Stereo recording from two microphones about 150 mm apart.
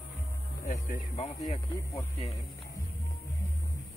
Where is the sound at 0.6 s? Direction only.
65° left (ahead or behind).